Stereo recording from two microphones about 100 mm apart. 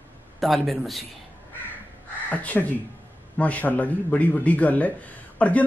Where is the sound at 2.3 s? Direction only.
15° left (ahead or behind).